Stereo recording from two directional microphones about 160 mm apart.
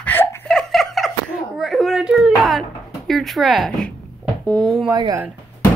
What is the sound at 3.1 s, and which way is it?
Speech, centre (ahead or behind).